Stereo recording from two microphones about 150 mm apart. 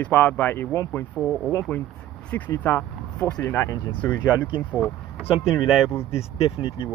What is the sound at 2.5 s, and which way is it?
Speech, 10° left (ahead or behind).